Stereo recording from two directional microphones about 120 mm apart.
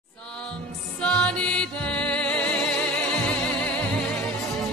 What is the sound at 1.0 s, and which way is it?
Music, 5° left (ahead or behind).